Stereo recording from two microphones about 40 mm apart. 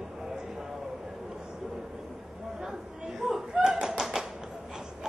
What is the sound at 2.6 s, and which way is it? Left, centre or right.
Chatter, centre.